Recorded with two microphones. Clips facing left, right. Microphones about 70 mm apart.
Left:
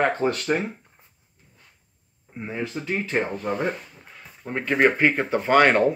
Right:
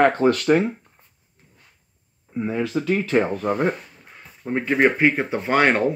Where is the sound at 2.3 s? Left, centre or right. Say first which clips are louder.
Right 7 dB; right.